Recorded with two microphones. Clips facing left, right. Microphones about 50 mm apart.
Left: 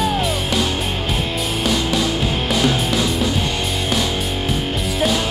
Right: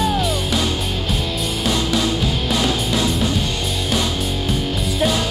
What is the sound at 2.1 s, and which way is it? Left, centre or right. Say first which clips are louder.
Music: left 1 dB; left.